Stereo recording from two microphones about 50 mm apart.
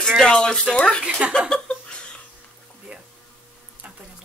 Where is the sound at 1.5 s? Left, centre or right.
Centre.